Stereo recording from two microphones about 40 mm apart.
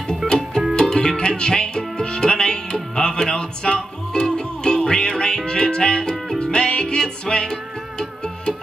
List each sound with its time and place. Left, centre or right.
0.7 s music: centre